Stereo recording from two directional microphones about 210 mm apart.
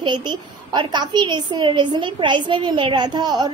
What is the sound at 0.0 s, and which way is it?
A child's voice, 20° right (ahead or behind).